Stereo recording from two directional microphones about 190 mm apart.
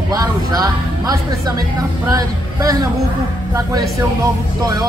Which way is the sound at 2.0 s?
20° right (ahead or behind).